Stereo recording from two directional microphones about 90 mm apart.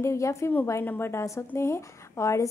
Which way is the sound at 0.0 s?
30° left (ahead or behind).